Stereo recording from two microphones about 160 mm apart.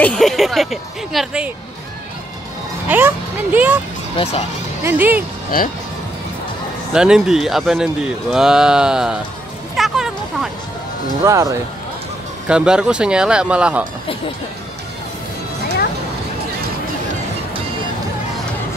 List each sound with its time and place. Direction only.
0.0 s speech: 5° left (ahead or behind)
2.9 s speech: 10° right (ahead or behind)
4.2 s speech: 40° left (ahead or behind)
4.8 s speech: 10° right (ahead or behind)
6.9 s speech: 5° right (ahead or behind)
9.8 s a sound: centre (ahead or behind)
11.2 s speech: 20° right (ahead or behind)
12.4 s speech: 5° right (ahead or behind)